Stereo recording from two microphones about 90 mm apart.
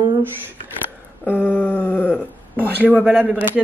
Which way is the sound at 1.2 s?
20° left (ahead or behind).